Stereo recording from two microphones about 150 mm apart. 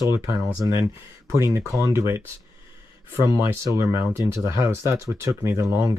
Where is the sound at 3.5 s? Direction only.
20° right (ahead or behind).